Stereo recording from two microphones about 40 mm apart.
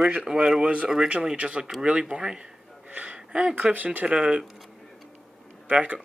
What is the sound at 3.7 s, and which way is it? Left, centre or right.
Speech, right.